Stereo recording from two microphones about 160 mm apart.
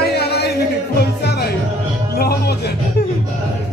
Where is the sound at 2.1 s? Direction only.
75° left (ahead or behind).